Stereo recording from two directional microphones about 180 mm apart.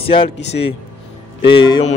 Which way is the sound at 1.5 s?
25° left (ahead or behind).